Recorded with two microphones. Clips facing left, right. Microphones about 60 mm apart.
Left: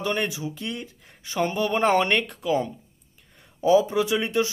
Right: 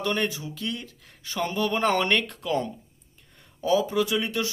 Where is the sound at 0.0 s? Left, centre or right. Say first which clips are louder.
Left 1 dB; centre.